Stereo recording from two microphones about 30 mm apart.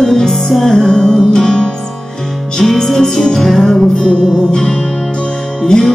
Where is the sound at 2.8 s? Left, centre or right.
Centre.